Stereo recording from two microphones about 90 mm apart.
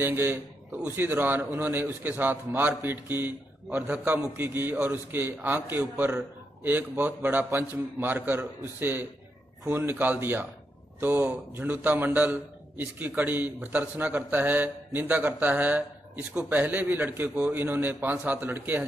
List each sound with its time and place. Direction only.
0.0 s a man's voice: 25° right (ahead or behind)